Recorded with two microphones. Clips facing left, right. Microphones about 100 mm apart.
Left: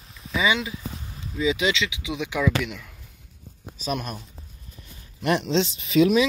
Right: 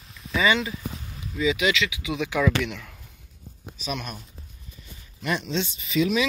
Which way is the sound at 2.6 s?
5° left (ahead or behind).